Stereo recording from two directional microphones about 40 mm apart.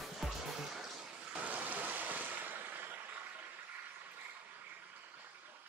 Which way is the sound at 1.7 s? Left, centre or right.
Right.